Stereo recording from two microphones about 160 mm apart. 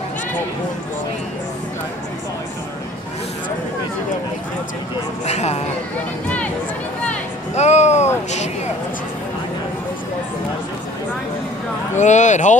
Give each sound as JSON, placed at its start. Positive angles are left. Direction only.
{"t": 5.2, "sound": "speech", "side_deg": 45}
{"t": 6.2, "sound": "speech", "side_deg": 10}
{"t": 7.5, "sound": "speech", "side_deg": 45}
{"t": 12.0, "sound": "speech", "side_deg": 50}